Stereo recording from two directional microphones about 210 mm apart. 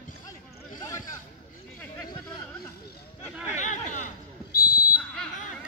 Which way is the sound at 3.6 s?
35° left (ahead or behind).